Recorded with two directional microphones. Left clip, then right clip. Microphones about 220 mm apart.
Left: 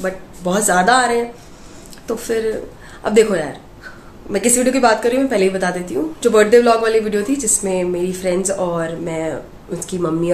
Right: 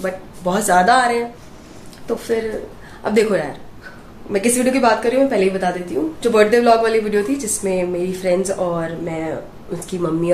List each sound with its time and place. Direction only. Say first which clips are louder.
0.0 s a woman's voice: even; 10° left (ahead or behind)